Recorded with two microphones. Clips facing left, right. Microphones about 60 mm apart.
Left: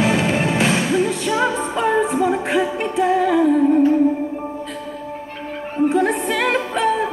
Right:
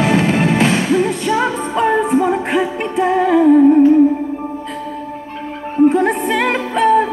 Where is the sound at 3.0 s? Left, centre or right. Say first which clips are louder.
Right 3 dB; centre.